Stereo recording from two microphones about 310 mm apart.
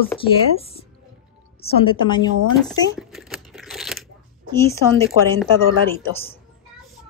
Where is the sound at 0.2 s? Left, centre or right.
Centre.